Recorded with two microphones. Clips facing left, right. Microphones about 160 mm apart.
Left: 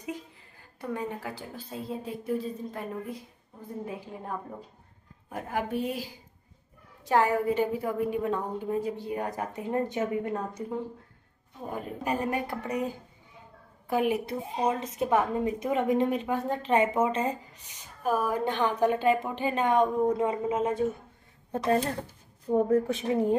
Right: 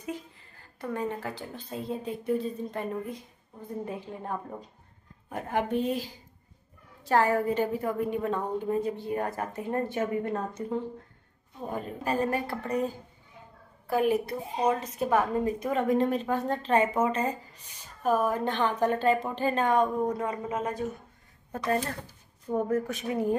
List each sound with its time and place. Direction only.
0.7 s a woman's voice: 10° left (ahead or behind)
11.7 s a woman's voice: 15° left (ahead or behind)
17.0 s speech: 25° left (ahead or behind)
17.6 s a woman's voice: 10° left (ahead or behind); by 23.3 s 25° left (ahead or behind)